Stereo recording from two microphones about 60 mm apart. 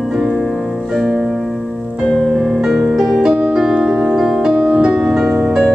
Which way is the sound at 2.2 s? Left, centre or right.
Centre.